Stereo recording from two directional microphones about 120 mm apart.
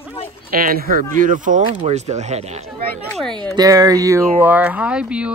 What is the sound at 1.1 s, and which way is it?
Speech, 90° right.